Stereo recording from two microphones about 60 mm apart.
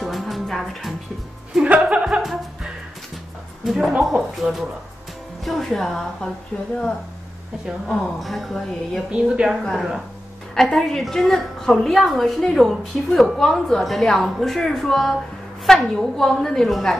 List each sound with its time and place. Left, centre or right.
0.0 s music: centre
1.5 s a woman's voice: centre
1.9 s music: centre
3.6 s a woman's voice: centre
6.5 s speech: left
7.6 s a woman's voice: centre
9.1 s a woman's voice: centre
10.5 s a woman's voice: centre